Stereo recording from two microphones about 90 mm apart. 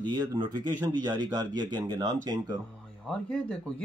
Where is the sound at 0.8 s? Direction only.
40° right (ahead or behind).